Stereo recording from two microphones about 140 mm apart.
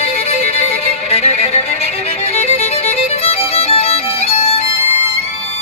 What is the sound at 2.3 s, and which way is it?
Music, 50° left (ahead or behind).